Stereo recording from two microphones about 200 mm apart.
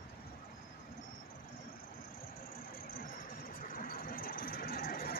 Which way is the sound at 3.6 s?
45° left (ahead or behind).